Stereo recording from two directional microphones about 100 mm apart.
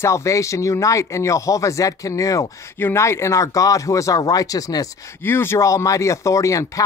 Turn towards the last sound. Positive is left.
turn(degrees=35)  # may be behind; listen again after turning